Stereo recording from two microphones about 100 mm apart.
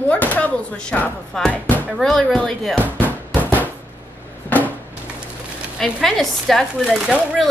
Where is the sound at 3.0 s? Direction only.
15° right (ahead or behind).